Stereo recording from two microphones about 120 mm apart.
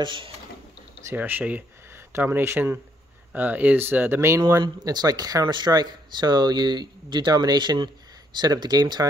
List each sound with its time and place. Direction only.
0.0 s speech: 45° right (ahead or behind)
1.1 s speech: 15° right (ahead or behind)
4.6 s speech: 30° right (ahead or behind)